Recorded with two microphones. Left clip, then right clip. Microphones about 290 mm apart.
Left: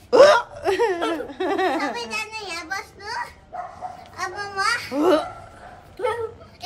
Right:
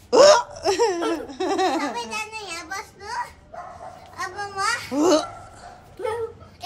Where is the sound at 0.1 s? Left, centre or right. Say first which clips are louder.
Even; centre.